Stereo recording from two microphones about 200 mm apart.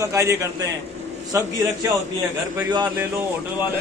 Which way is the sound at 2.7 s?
20° right (ahead or behind).